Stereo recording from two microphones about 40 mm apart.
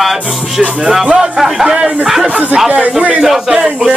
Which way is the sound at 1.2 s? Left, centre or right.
Centre.